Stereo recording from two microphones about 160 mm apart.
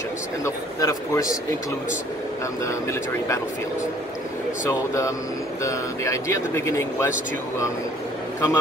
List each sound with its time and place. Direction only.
0.7 s speech: 20° left (ahead or behind)
2.6 s speech: 20° left (ahead or behind)
4.6 s speech: 20° left (ahead or behind)